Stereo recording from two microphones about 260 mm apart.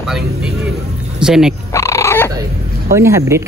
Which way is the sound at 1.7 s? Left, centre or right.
Centre.